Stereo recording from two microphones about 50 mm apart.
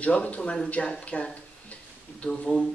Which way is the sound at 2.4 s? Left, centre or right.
Centre.